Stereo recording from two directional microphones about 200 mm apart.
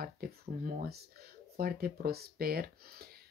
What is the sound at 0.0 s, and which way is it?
Speech, 45° right (ahead or behind).